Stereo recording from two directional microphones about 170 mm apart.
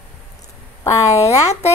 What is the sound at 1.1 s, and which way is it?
Speech, 40° left (ahead or behind).